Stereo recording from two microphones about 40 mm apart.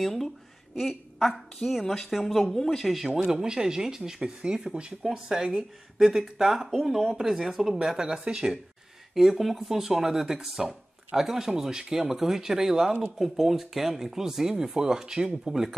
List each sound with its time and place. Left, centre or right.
0.0 s a woman's voice: centre
2.8 s speech: centre
3.3 s speech: centre
6.8 s speech: centre
7.2 s speech: centre
9.1 s speech: centre